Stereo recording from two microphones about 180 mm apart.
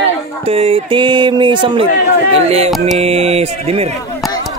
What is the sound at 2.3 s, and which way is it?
Speech, 35° right (ahead or behind).